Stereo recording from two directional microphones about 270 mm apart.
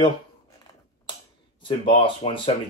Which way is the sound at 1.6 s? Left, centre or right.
Centre.